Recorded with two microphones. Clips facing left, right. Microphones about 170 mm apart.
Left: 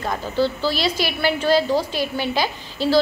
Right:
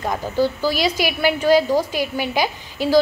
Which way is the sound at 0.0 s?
15° right (ahead or behind).